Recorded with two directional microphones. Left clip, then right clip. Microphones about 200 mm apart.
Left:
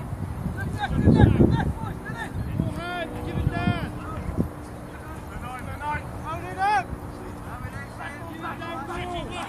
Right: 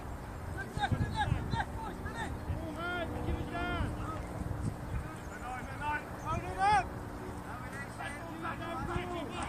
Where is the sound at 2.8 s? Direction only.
50° left (ahead or behind).